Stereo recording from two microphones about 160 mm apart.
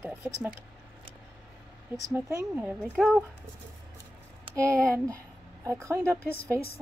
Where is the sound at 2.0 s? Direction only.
20° right (ahead or behind).